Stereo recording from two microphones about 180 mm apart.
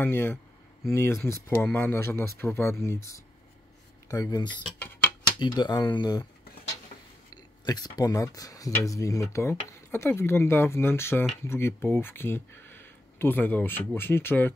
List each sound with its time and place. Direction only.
0.0 s speech: 10° left (ahead or behind)
7.6 s speech: 20° left (ahead or behind)